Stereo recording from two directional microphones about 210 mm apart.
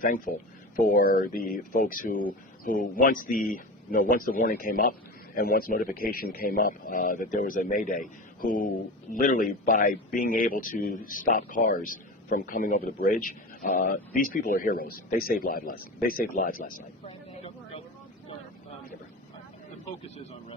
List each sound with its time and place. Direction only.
0.0 s a man's voice: 40° left (ahead or behind)
17.0 s vehicle: 30° left (ahead or behind)